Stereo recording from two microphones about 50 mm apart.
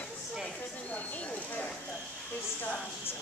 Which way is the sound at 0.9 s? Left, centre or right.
Left.